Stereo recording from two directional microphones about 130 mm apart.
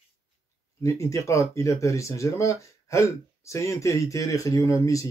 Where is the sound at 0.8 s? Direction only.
25° left (ahead or behind).